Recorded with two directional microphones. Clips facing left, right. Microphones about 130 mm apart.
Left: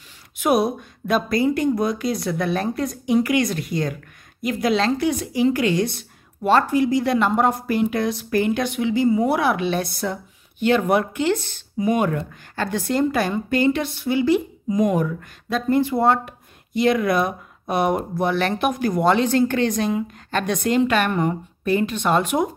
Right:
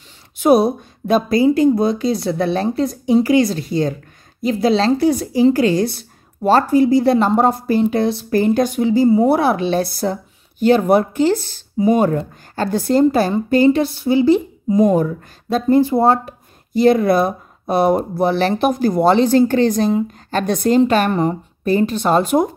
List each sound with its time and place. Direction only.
0.4 s a woman's voice: 30° right (ahead or behind)